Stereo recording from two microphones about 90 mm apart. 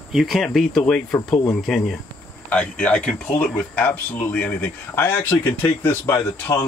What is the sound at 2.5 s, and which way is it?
Speech, 15° left (ahead or behind).